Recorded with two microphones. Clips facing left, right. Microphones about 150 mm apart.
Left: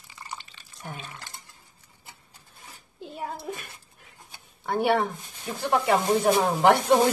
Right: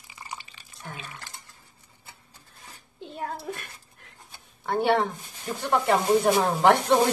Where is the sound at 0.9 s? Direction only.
15° left (ahead or behind).